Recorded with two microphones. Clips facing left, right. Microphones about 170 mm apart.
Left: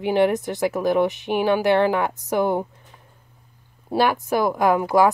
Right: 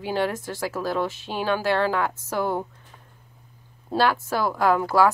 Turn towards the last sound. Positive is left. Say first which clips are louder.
# left 2 dB
turn(degrees=15)  # may be behind; listen again after turning